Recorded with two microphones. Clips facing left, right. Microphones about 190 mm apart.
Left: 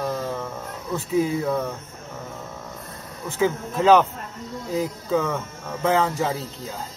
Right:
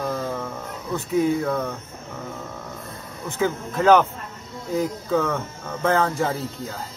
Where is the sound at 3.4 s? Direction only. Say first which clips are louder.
Even; 5° left (ahead or behind).